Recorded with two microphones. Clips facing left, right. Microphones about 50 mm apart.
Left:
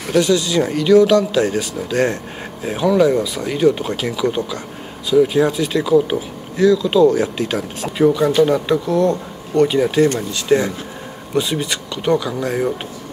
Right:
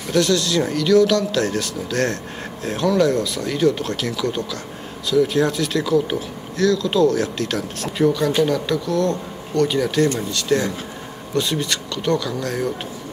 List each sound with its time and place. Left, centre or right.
0.1 s speech: centre